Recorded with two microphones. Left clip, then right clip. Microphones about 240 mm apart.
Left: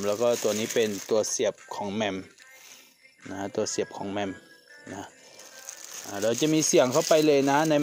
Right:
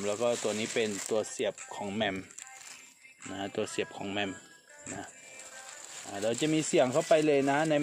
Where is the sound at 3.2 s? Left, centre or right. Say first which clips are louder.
Left 5 dB; left.